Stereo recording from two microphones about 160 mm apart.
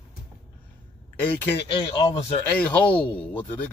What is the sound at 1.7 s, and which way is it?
Speech, 30° left (ahead or behind).